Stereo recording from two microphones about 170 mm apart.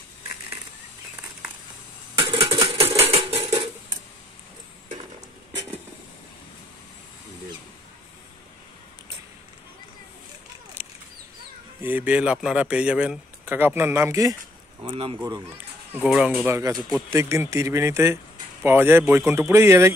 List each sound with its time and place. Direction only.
2.2 s a sound: 35° right (ahead or behind)
2.8 s music: 35° right (ahead or behind)
10.8 s a sound: 15° right (ahead or behind)
11.8 s speech: 10° right (ahead or behind)
14.8 s speech: 30° right (ahead or behind)
15.5 s a child's voice: 10° right (ahead or behind)